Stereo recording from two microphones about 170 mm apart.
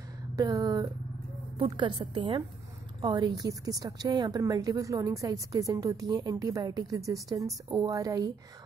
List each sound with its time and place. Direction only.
0.4 s a woman's voice: 20° right (ahead or behind)